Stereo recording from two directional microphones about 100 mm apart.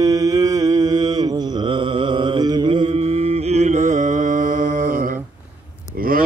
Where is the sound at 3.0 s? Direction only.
90° right.